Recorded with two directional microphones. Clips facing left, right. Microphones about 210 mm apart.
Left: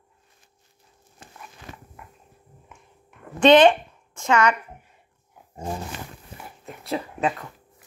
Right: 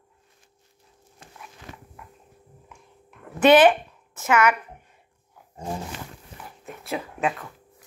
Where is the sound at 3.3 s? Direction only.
5° right (ahead or behind).